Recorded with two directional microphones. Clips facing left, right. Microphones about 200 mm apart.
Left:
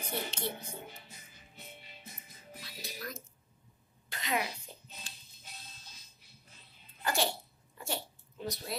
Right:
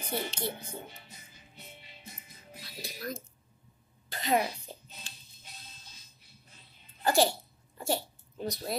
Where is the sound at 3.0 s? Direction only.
30° right (ahead or behind).